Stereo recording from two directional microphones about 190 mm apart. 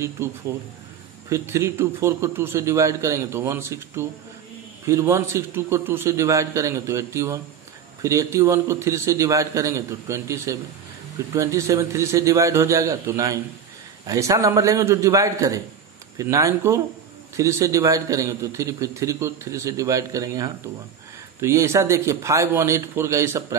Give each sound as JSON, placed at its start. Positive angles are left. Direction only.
{"t": 0.5, "sound": "a man's voice", "side_deg": -15}